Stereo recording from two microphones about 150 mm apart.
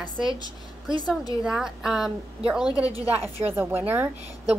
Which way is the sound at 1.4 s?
5° right (ahead or behind).